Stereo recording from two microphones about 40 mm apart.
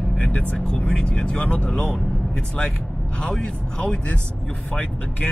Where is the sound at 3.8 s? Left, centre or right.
Left.